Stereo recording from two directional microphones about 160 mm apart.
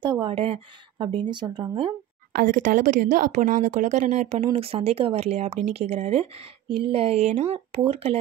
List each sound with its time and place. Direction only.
0.0 s a woman's voice: 30° right (ahead or behind)
2.3 s a woman's voice: 55° right (ahead or behind)